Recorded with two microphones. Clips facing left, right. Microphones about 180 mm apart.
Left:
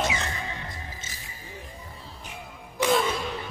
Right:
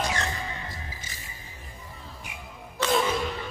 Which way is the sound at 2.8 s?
10° left (ahead or behind).